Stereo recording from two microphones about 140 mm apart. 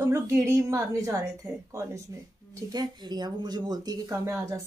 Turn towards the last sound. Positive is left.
turn(degrees=-25)  # may be behind; listen again after turning